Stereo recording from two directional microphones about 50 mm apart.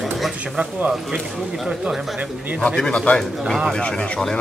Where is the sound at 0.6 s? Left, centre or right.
Right.